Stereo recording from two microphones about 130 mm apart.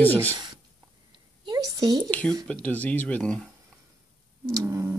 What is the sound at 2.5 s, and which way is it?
Speech, 10° left (ahead or behind).